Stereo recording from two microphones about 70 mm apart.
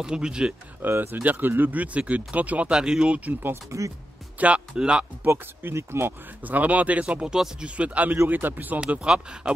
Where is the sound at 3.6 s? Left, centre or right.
Right.